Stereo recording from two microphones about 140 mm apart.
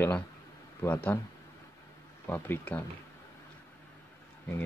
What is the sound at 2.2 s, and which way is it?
Speech, 15° left (ahead or behind).